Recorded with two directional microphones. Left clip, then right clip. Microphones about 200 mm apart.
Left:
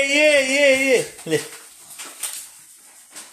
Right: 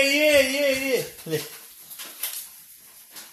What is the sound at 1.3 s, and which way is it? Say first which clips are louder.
Speech: left 6 dB; 55° left (ahead or behind).